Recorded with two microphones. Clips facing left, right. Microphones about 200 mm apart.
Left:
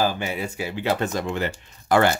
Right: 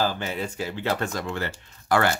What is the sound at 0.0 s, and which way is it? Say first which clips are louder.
Speech: left 2 dB; 15° left (ahead or behind).